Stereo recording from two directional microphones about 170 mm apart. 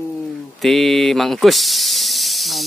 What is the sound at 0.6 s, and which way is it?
Speech, centre (ahead or behind).